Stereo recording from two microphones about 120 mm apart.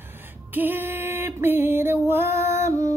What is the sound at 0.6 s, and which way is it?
Music, 15° right (ahead or behind).